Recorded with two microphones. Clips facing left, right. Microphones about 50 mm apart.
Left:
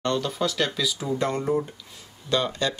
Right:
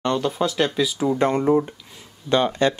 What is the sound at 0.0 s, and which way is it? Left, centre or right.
Speech, right.